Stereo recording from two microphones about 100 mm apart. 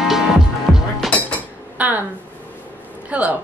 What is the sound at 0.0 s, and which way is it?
Music, 5° right (ahead or behind).